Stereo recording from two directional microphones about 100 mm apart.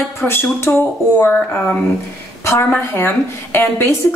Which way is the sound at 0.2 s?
20° left (ahead or behind).